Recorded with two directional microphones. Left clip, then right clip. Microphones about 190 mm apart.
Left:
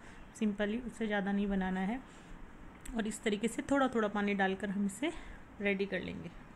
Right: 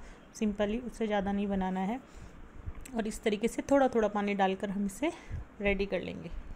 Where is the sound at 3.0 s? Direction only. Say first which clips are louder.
Right 4 dB; 15° right (ahead or behind).